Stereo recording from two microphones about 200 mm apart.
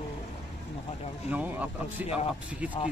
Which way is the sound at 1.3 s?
10° right (ahead or behind).